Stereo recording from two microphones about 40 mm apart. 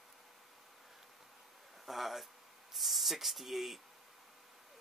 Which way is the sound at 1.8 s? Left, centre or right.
Centre.